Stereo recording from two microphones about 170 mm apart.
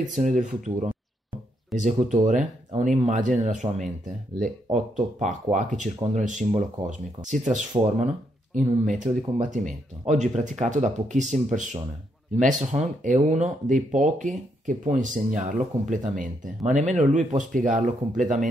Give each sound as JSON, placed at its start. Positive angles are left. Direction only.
{"t": 0.2, "sound": "speech", "side_deg": -45}